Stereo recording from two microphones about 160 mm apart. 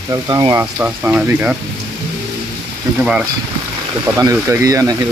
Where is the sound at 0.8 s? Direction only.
10° right (ahead or behind).